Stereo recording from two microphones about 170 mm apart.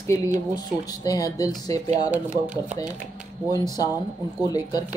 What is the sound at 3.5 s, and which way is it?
Speech, 20° left (ahead or behind).